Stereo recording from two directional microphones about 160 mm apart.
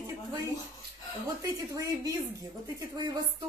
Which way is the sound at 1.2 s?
20° right (ahead or behind).